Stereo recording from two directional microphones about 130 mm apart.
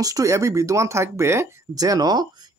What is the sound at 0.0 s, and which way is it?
Speech, 25° right (ahead or behind).